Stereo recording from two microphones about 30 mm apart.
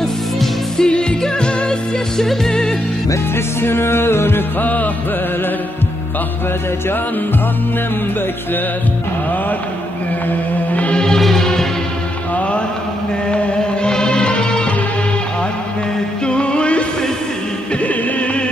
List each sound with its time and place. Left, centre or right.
0.7 s music: left
2.1 s music: centre
4.6 s music: left
10.9 s music: left
11.1 s music: centre
13.6 s music: left
16.3 s music: left